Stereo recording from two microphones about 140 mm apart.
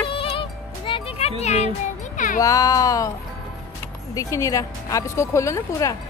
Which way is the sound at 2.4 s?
25° left (ahead or behind).